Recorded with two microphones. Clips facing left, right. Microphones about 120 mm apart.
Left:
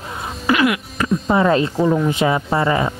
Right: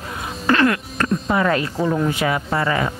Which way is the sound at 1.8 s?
Centre (ahead or behind).